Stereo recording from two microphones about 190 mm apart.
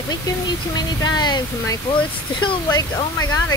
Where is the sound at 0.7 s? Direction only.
20° left (ahead or behind).